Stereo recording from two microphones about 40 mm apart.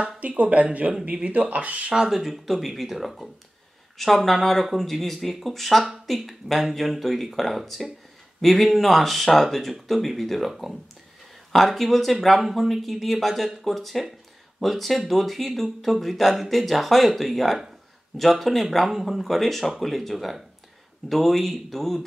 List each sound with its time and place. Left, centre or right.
0.2 s speech: right
2.0 s speech: centre